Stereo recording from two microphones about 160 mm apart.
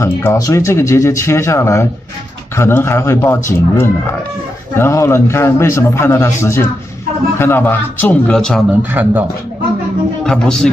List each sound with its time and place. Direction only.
0.0 s a man's voice: 15° left (ahead or behind)
9.0 s a man's voice: 10° right (ahead or behind)
10.2 s speech: 5° left (ahead or behind)